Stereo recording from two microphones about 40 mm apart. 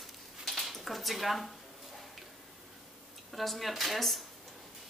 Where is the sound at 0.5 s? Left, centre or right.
Centre.